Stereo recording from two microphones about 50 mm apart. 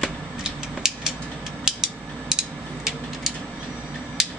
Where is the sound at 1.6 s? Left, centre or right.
Centre.